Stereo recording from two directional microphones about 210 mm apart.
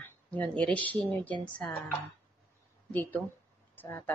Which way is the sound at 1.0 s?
5° left (ahead or behind).